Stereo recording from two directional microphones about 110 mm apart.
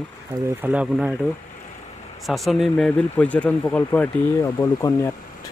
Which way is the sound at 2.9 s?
10° left (ahead or behind).